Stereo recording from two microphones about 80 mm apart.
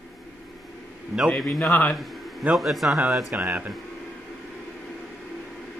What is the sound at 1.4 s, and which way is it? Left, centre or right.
Speech, centre.